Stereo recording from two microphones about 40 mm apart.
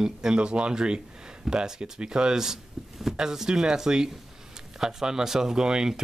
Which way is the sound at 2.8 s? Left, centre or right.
Centre.